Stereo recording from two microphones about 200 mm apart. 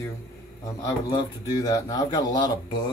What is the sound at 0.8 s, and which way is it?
Speech, 15° left (ahead or behind).